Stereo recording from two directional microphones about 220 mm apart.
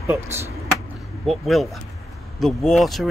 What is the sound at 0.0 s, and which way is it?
Speech, 10° right (ahead or behind).